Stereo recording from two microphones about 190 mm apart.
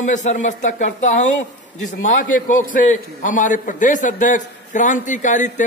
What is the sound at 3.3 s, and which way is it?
A man's voice, 40° left (ahead or behind).